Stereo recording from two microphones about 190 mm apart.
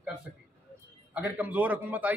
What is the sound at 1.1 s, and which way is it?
A man's voice, 10° right (ahead or behind).